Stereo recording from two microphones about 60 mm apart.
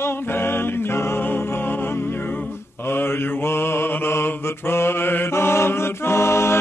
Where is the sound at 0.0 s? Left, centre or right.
Left.